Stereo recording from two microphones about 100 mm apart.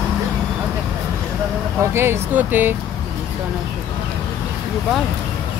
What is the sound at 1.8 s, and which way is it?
Speech, 25° right (ahead or behind).